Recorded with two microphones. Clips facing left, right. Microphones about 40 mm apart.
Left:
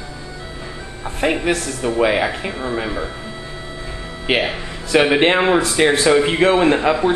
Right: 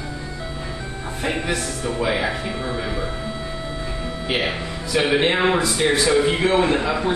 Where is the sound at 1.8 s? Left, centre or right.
Left.